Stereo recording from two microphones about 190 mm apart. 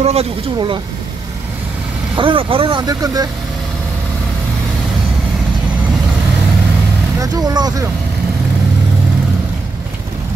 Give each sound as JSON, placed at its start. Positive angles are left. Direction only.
{"t": 0.0, "sound": "speech", "side_deg": -30}
{"t": 2.1, "sound": "speech", "side_deg": -25}
{"t": 7.2, "sound": "speech", "side_deg": -20}